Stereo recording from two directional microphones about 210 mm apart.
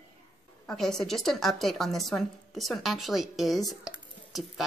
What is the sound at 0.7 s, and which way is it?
Speech, centre (ahead or behind).